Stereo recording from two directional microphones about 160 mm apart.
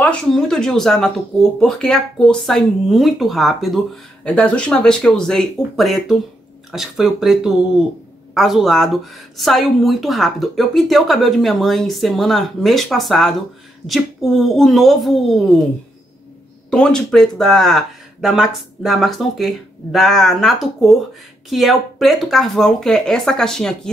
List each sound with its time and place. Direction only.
0.0 s speech: 5° left (ahead or behind)
16.7 s speech: 5° left (ahead or behind)